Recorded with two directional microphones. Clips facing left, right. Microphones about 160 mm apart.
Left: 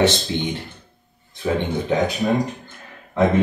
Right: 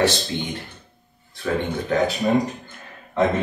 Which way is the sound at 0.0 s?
25° left (ahead or behind).